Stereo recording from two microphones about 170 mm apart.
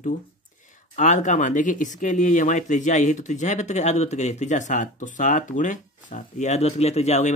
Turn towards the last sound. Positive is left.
turn(degrees=40)  # may be behind; listen again after turning